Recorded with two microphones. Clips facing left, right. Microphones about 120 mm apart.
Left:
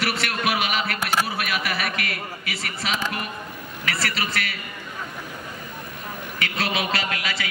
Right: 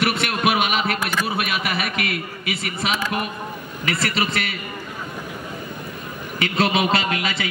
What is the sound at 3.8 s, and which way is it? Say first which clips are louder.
Speech: right 4 dB; 20° right (ahead or behind).